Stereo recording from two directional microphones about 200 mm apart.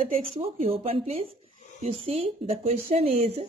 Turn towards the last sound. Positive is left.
turn(degrees=-30)  # may be behind; listen again after turning